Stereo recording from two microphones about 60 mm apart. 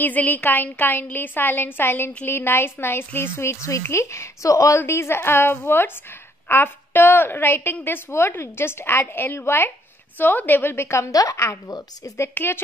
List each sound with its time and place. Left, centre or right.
0.0 s a woman's voice: left
4.7 s a woman's voice: left
10.1 s a woman's voice: left
11.1 s a woman's voice: left
11.3 s a woman's voice: left